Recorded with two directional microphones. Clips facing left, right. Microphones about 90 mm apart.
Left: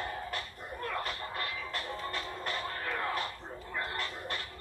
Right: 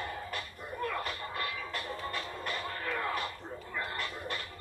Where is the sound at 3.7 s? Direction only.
35° left (ahead or behind).